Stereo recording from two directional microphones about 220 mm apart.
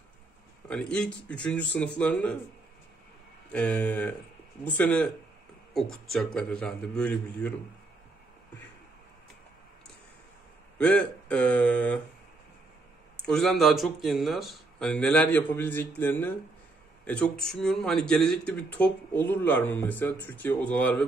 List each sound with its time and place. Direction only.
0.7 s speech: 5° left (ahead or behind)
3.5 s speech: 5° left (ahead or behind)
10.8 s speech: 5° left (ahead or behind)
13.2 s speech: centre (ahead or behind)